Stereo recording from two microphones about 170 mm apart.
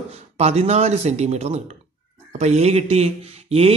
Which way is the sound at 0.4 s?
40° right (ahead or behind).